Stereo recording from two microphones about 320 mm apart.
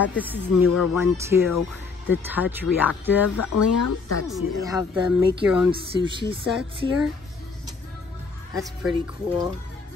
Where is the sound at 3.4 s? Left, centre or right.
Left.